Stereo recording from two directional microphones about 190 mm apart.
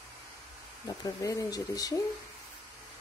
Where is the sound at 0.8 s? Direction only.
20° left (ahead or behind).